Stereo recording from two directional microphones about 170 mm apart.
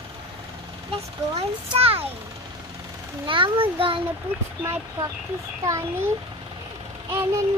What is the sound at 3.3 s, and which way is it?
A child's voice, 30° right (ahead or behind).